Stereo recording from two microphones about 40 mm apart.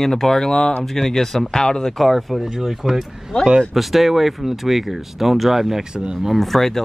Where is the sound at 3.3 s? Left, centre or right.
Left.